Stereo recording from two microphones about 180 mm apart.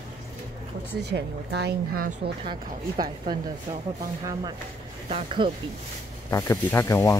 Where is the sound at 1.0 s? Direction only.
70° right (ahead or behind).